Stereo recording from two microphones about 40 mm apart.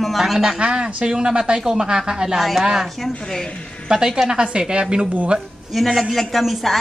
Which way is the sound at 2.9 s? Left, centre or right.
Centre.